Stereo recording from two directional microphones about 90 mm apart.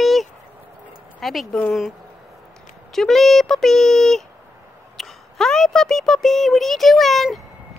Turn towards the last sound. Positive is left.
turn(degrees=0)  # may be behind; listen again after turning